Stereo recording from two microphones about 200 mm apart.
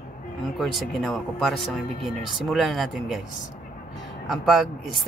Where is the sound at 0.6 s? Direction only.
Centre (ahead or behind).